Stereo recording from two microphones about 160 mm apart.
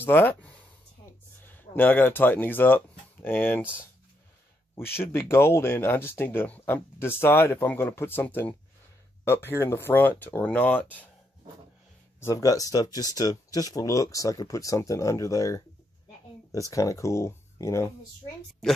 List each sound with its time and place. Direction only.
0.0 s speech: 10° left (ahead or behind)
4.7 s speech: 15° left (ahead or behind)
12.2 s speech: 20° left (ahead or behind)
18.6 s speech: 5° left (ahead or behind)